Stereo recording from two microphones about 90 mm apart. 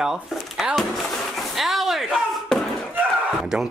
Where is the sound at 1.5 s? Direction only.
Centre (ahead or behind).